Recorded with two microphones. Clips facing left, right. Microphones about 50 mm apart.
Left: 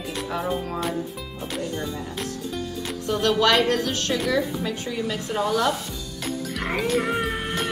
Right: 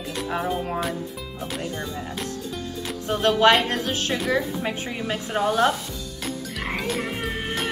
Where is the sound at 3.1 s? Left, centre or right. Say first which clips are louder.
Right 2 dB; right.